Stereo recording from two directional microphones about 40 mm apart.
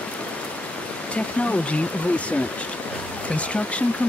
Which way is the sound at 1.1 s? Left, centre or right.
Left.